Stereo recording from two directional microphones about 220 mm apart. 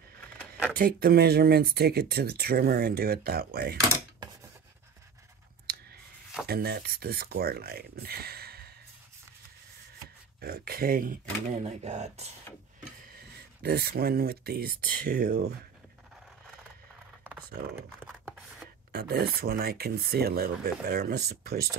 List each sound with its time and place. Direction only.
0.7 s speech: 45° right (ahead or behind)
6.4 s speech: 45° right (ahead or behind)
10.4 s speech: 45° right (ahead or behind)
13.1 s speech: 45° right (ahead or behind)
17.2 s computer keyboard: 5° right (ahead or behind)
17.8 s scratch: 5° right (ahead or behind)
18.9 s speech: 45° right (ahead or behind)